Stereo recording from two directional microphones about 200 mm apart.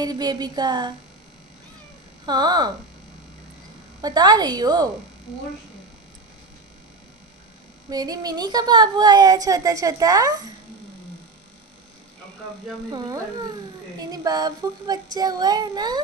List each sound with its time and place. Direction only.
0.0 s a woman's voice: 20° right (ahead or behind)
2.2 s a woman's voice: 20° right (ahead or behind)
4.0 s a woman's voice: 20° right (ahead or behind)
7.9 s a woman's voice: 20° right (ahead or behind)
12.9 s a woman's voice: 20° right (ahead or behind)